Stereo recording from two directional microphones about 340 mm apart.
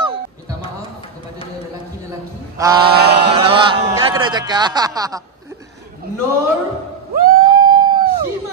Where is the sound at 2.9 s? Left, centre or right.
Right.